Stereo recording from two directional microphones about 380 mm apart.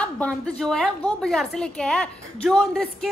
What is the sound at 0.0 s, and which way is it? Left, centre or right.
A woman's voice, centre.